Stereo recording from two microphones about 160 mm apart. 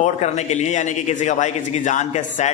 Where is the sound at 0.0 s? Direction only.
45° left (ahead or behind).